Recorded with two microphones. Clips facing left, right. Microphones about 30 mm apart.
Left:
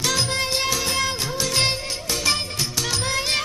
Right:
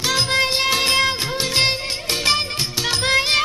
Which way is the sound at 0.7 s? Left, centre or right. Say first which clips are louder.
Right 6 dB; right.